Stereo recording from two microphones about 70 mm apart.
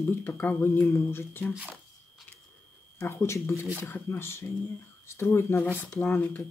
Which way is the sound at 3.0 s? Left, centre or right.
Left.